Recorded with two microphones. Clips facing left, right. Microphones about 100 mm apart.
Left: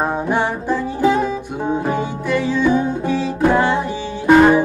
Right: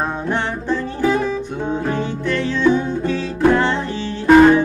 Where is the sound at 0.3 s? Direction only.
15° left (ahead or behind).